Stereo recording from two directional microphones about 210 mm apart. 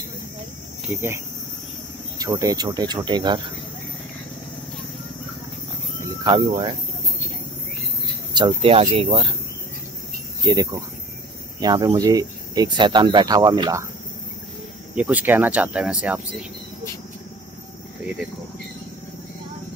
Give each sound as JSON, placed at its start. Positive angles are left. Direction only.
{"t": 0.8, "sound": "speech", "side_deg": -10}
{"t": 5.9, "sound": "wild animals", "side_deg": -20}
{"t": 8.4, "sound": "speech", "side_deg": -25}
{"t": 10.4, "sound": "speech", "side_deg": -20}
{"t": 15.0, "sound": "speech", "side_deg": -10}